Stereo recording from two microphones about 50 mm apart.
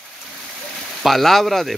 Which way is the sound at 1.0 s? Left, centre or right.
Centre.